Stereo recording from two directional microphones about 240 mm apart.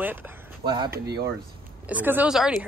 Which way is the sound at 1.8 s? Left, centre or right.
Centre.